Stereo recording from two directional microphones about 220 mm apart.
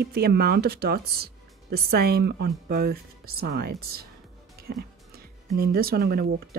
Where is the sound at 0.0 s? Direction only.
45° right (ahead or behind).